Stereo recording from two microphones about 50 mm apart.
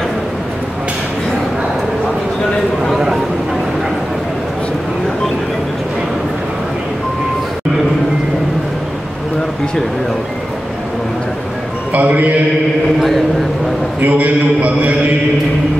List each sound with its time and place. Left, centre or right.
11.9 s mantra: right
14.0 s mantra: right